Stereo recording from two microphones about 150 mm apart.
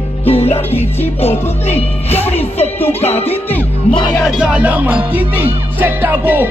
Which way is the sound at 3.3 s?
10° left (ahead or behind).